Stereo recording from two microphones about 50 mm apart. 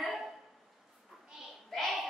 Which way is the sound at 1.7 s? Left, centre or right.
Centre.